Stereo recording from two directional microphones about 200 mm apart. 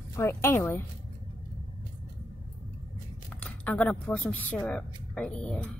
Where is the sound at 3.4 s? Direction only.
5° left (ahead or behind).